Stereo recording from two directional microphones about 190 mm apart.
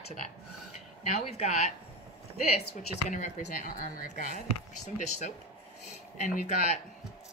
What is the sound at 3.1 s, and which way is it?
Speech, 45° left (ahead or behind).